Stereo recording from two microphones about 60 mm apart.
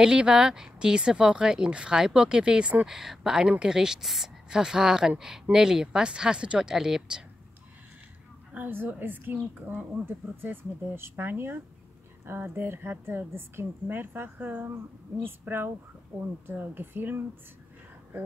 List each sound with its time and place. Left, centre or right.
0.0 s speech: centre
2.9 s speech: centre
8.5 s a woman's voice: right